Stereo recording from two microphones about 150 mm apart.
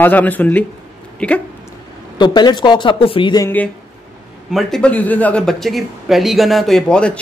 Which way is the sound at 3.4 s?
10° left (ahead or behind).